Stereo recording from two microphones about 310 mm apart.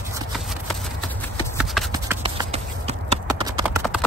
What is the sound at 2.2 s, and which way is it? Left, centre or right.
Clip-clop, centre.